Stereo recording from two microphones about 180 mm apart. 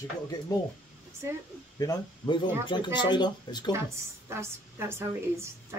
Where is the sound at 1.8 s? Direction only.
20° left (ahead or behind).